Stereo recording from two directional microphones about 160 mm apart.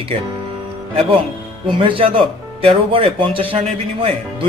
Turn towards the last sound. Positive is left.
turn(degrees=-35)  # may be behind; listen again after turning